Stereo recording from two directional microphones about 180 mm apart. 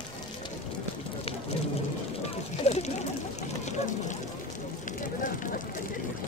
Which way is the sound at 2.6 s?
35° left (ahead or behind).